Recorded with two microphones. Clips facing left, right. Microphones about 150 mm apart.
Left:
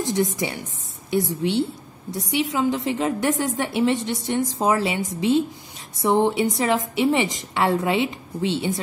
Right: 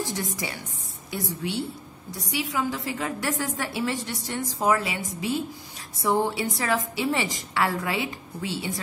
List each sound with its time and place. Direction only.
0.0 s a woman's voice: 20° left (ahead or behind)